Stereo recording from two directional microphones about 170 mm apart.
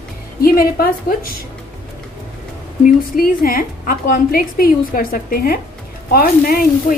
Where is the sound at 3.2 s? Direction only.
60° left (ahead or behind).